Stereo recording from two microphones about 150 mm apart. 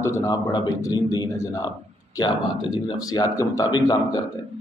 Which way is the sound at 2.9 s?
25° left (ahead or behind).